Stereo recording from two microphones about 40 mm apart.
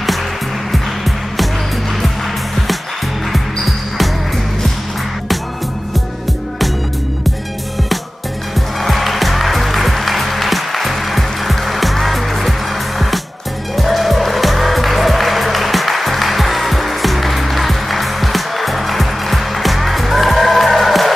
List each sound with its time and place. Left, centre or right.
0.7 s music: centre
8.8 s music: centre
13.7 s music: centre